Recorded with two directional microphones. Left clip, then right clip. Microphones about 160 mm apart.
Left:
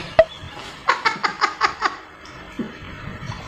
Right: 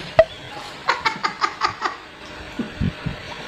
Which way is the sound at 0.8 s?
25° left (ahead or behind).